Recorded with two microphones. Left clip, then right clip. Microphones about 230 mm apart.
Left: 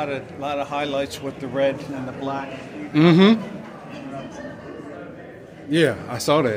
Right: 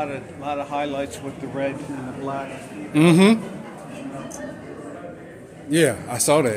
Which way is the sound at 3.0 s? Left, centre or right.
Centre.